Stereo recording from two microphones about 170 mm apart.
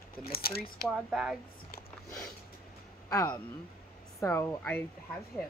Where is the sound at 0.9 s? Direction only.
5° right (ahead or behind).